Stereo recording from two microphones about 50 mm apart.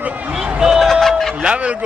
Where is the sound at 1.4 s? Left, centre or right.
Right.